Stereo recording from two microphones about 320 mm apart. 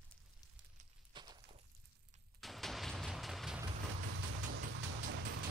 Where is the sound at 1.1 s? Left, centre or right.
Centre.